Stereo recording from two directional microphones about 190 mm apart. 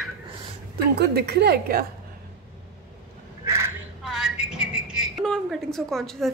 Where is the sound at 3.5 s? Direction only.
15° right (ahead or behind).